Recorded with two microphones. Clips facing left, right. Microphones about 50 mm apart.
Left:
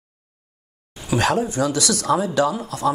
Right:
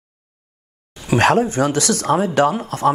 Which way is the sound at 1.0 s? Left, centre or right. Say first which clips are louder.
Right 5 dB; right.